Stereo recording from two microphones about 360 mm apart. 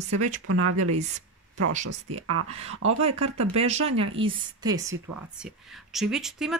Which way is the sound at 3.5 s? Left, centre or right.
Centre.